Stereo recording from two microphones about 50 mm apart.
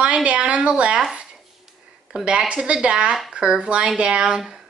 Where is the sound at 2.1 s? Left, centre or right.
Centre.